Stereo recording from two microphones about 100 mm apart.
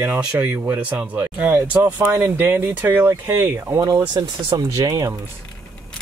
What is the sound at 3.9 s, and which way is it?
Speech, 40° right (ahead or behind).